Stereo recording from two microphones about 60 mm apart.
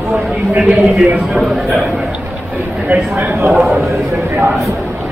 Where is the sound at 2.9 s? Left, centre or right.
Right.